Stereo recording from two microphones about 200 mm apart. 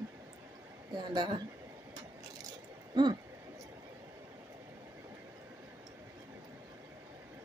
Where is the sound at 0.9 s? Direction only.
20° right (ahead or behind).